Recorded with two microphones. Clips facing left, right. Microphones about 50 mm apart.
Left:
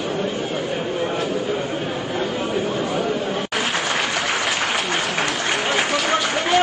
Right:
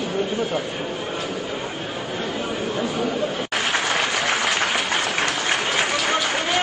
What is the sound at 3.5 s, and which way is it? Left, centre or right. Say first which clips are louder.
Applause: right 1 dB; centre.